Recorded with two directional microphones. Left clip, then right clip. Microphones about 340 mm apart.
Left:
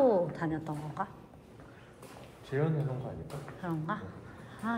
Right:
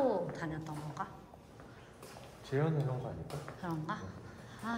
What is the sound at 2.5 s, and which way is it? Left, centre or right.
Speech, right.